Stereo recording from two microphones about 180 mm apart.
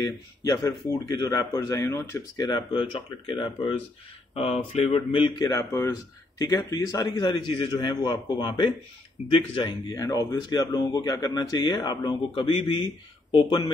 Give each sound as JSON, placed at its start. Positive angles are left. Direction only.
{"t": 0.0, "sound": "speech", "side_deg": 20}
{"t": 5.5, "sound": "speech", "side_deg": 15}